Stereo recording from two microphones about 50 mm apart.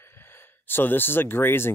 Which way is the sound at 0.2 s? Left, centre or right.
Left.